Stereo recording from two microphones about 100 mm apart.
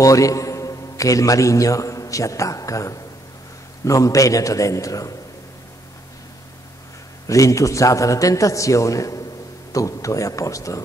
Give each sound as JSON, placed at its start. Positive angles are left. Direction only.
{"t": 0.0, "sound": "a man's voice", "side_deg": 35}
{"t": 7.2, "sound": "a man's voice", "side_deg": 35}